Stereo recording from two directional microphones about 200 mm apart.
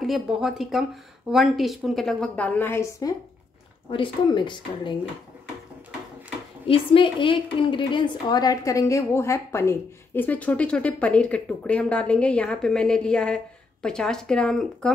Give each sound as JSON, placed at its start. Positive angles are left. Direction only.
{"t": 0.0, "sound": "a woman's voice", "side_deg": 0}
{"t": 6.7, "sound": "a woman's voice", "side_deg": 25}